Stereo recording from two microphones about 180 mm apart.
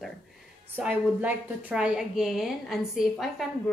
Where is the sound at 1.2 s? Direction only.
10° right (ahead or behind).